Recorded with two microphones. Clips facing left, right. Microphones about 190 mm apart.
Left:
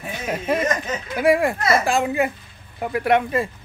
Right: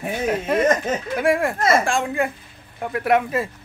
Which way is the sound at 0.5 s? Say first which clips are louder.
Right 2 dB; centre (ahead or behind).